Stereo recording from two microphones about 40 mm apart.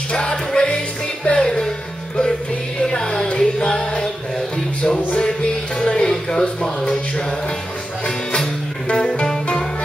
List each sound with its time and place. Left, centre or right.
0.1 s music: centre
2.8 s music: centre
6.6 s a sound: centre
8.8 s music: left